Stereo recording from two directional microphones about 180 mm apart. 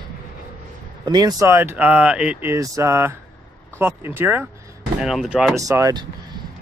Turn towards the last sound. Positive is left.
turn(degrees=-20)  # may be behind; listen again after turning